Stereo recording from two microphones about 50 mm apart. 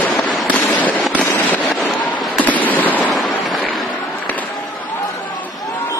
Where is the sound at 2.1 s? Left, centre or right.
Left.